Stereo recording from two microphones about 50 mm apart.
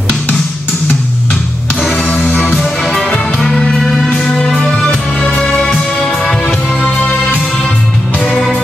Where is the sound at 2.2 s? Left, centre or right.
Left.